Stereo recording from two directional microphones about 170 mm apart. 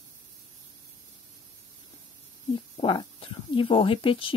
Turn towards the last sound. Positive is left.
turn(degrees=30)  # may be behind; listen again after turning